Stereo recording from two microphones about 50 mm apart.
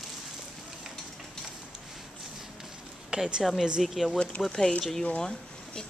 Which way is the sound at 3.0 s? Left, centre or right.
Centre.